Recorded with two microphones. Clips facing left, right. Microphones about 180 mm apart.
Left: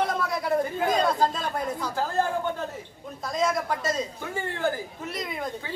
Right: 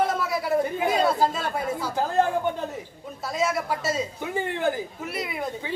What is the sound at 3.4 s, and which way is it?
Speech, 5° right (ahead or behind).